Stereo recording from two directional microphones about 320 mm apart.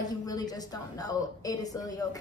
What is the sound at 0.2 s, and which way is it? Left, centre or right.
Speech, centre.